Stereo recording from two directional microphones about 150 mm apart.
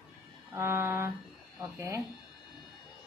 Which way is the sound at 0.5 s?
20° right (ahead or behind).